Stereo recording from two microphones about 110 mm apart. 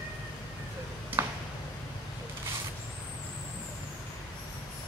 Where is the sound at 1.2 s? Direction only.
20° right (ahead or behind).